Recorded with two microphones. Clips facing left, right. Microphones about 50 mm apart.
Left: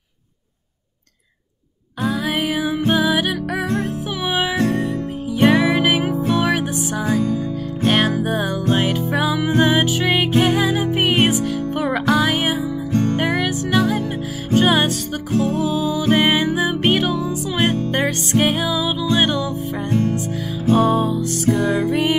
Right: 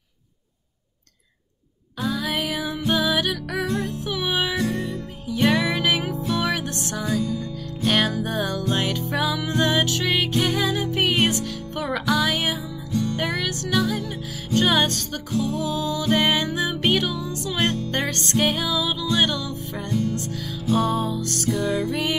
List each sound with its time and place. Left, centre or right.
2.0 s music: centre
3.6 s music: left
5.4 s music: left
6.4 s music: left
12.9 s music: left
13.2 s music: left
15.3 s music: left
15.6 s music: centre
19.9 s music: left; by 21.4 s centre
21.5 s music: left